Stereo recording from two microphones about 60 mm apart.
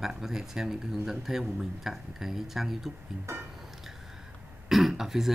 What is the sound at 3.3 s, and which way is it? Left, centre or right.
Speech, right.